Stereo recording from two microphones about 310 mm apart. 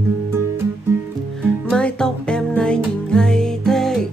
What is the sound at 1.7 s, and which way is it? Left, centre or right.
Music, centre.